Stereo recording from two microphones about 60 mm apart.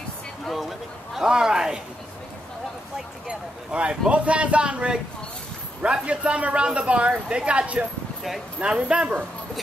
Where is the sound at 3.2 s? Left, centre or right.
Centre.